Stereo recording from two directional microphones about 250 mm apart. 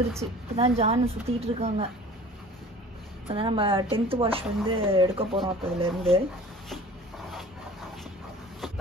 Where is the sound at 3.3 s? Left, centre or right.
Right.